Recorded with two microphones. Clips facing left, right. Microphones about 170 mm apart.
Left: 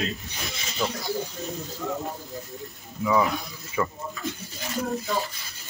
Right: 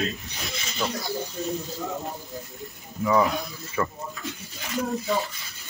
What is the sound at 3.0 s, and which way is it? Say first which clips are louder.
Speech: right 1 dB; centre (ahead or behind).